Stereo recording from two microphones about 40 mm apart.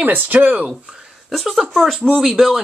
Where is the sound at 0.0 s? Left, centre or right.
Right.